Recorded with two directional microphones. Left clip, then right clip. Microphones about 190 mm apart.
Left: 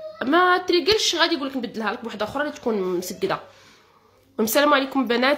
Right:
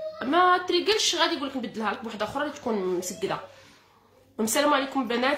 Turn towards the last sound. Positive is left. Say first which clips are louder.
# left 5 dB
turn(degrees=40)  # may be behind; listen again after turning